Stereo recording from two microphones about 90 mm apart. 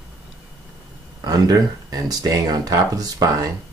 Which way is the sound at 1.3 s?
45° right (ahead or behind).